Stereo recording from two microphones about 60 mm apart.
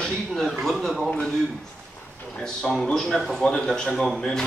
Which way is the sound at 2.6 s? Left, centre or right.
Centre.